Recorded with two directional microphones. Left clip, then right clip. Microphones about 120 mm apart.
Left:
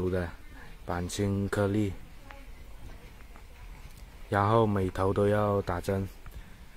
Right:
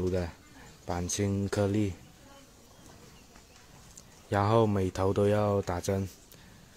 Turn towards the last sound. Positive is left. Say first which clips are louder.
# even
turn(degrees=-25)  # may be behind; listen again after turning